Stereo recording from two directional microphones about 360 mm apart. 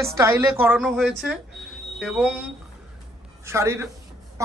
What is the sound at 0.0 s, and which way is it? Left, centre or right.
A woman's voice, centre.